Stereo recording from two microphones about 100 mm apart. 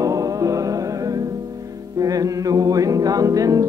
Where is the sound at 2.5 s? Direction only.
35° right (ahead or behind).